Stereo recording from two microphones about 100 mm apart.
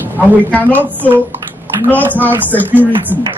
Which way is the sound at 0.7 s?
20° right (ahead or behind).